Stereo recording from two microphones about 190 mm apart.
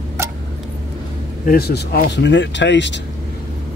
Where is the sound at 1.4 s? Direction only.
55° left (ahead or behind); by 3.0 s 70° left (ahead or behind).